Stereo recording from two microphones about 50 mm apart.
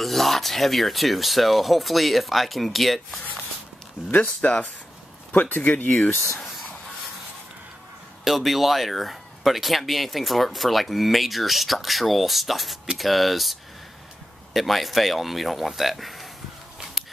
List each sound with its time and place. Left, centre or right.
0.0 s speech: centre
4.1 s speech: left
8.2 s speech: centre
17.0 s a sound: centre